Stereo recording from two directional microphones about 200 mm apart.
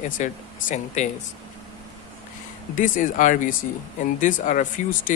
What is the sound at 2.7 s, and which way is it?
Speech, 40° left (ahead or behind).